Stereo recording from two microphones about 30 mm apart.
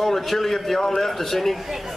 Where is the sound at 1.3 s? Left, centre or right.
Centre.